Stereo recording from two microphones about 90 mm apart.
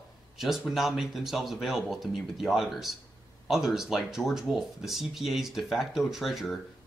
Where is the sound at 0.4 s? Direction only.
5° right (ahead or behind).